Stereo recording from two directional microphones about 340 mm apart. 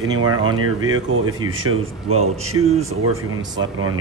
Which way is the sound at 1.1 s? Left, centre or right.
Right.